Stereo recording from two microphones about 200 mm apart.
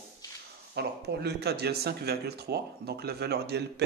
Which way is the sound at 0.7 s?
55° right (ahead or behind).